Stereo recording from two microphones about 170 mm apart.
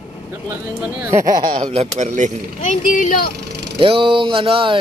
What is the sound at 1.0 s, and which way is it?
Speech, 20° right (ahead or behind).